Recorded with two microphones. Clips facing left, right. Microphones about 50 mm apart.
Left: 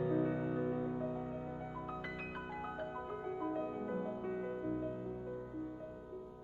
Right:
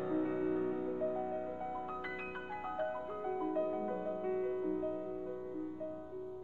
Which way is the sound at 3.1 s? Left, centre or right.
Centre.